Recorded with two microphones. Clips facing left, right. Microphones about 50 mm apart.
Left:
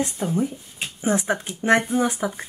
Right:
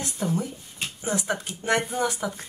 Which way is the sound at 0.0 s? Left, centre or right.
Left.